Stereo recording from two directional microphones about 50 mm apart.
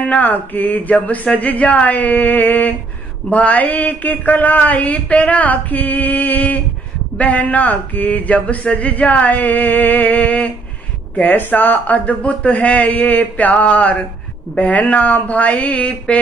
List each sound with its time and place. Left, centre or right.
0.0 s speech: left